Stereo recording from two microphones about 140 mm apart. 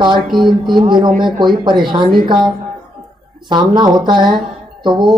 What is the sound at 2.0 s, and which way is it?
Speech, 90° right.